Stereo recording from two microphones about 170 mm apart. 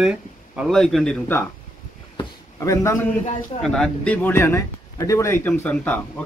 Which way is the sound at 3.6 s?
5° left (ahead or behind).